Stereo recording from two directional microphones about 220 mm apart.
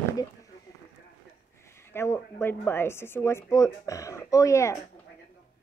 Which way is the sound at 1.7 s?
10° left (ahead or behind).